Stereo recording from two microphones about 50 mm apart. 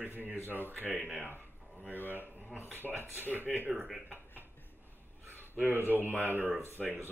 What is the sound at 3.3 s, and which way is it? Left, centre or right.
Speech, right.